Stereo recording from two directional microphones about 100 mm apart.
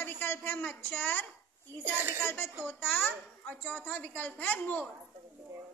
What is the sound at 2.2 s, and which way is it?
A child's voice, 25° left (ahead or behind).